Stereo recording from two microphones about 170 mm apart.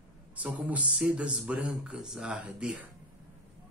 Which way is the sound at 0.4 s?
10° right (ahead or behind).